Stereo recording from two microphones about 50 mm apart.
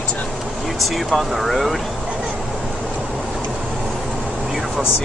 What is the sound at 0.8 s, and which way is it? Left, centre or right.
Speech, centre.